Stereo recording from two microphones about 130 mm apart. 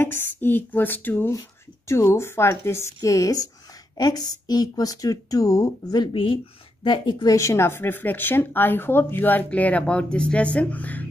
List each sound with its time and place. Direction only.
0.0 s speech: 15° left (ahead or behind)
6.1 s speech: 40° left (ahead or behind)
7.3 s speech: 20° left (ahead or behind)